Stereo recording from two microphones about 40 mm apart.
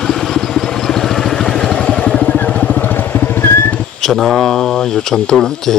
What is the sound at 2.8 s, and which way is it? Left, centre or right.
Vehicle, left.